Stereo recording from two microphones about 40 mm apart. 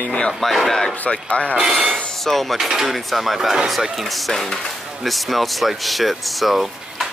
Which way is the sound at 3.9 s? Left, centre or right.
Centre.